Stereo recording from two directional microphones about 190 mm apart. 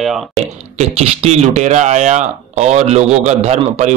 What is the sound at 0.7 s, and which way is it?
Speech, 35° right (ahead or behind).